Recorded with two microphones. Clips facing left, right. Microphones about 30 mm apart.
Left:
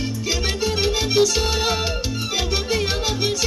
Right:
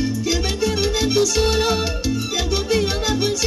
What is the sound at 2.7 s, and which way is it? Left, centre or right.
Music, left.